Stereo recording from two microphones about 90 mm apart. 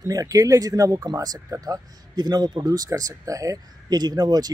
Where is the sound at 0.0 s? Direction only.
40° right (ahead or behind).